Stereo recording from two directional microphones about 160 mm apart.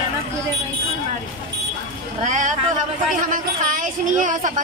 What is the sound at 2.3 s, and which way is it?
Speech, 50° right (ahead or behind).